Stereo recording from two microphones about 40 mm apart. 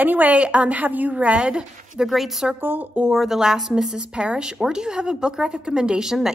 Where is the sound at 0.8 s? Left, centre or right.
Right.